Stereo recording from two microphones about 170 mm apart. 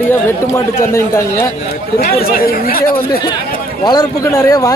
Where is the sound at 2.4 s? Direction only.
60° left (ahead or behind).